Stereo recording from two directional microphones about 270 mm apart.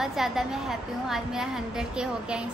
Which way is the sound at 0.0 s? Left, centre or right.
Centre.